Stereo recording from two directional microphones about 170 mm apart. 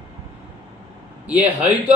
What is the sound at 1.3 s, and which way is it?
Speech, 10° right (ahead or behind).